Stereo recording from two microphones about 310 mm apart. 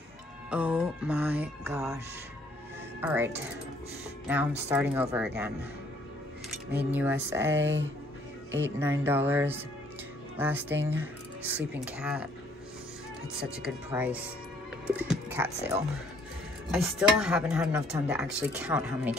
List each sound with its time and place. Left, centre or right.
0.5 s speech: centre
3.0 s speech: centre
6.7 s speech: centre
7.6 s speech: right
8.7 s speech: centre
13.3 s speech: centre